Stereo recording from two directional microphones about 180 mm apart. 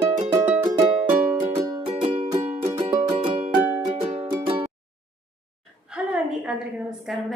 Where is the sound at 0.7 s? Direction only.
10° right (ahead or behind).